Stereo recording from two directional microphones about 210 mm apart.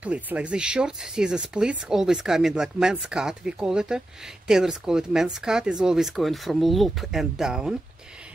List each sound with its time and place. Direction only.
0.0 s speech: 5° right (ahead or behind)